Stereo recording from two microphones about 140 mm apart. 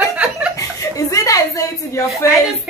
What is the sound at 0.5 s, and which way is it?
A woman's voice, 25° left (ahead or behind).